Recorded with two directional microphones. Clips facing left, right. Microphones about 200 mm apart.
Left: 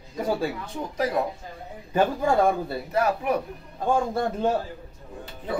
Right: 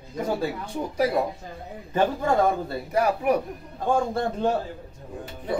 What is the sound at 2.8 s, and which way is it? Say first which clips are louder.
Speech: right 2 dB; 10° right (ahead or behind).